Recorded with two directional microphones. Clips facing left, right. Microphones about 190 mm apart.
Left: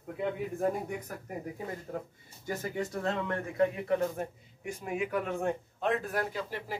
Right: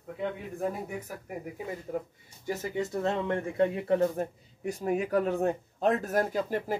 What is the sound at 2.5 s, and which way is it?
Speech, 25° right (ahead or behind).